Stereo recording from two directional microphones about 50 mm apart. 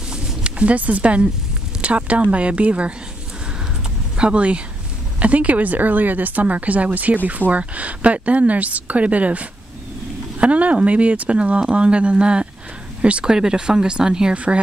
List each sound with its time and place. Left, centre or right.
0.4 s speech: right
4.2 s speech: right
13.3 s speech: centre
14.3 s speech: right